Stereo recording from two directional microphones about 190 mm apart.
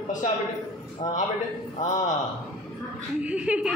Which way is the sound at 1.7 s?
40° left (ahead or behind).